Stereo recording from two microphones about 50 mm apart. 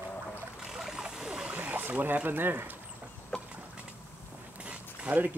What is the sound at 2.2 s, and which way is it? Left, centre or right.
Speech, right.